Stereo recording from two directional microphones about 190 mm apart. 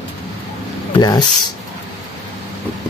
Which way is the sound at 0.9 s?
20° left (ahead or behind).